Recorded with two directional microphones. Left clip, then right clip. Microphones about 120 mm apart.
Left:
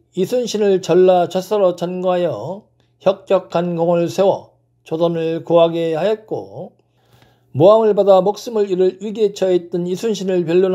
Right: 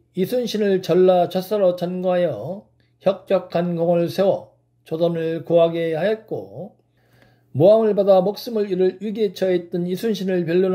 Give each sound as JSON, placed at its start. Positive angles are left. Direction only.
{"t": 0.1, "sound": "speech", "side_deg": 25}
{"t": 7.5, "sound": "speech", "side_deg": 25}